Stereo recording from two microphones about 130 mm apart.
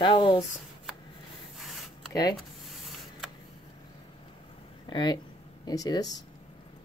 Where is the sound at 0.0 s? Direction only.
40° left (ahead or behind).